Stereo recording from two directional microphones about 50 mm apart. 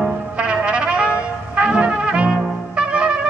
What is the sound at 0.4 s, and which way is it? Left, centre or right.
Trumpet, right.